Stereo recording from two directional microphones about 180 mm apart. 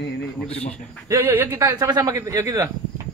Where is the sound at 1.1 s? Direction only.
10° right (ahead or behind).